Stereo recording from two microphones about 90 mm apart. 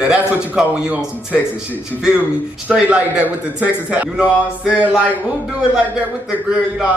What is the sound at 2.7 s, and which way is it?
A man's voice, 15° right (ahead or behind).